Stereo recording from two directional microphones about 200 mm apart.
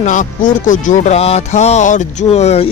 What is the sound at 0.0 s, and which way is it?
Speech, 40° left (ahead or behind).